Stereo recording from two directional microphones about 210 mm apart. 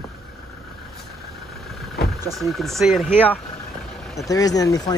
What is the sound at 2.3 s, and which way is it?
Speech, centre (ahead or behind).